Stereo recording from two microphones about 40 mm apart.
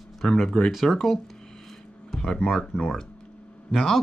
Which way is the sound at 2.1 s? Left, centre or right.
Left.